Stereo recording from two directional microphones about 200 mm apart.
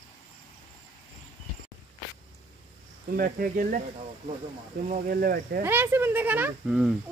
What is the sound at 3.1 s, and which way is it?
Speech, 45° right (ahead or behind).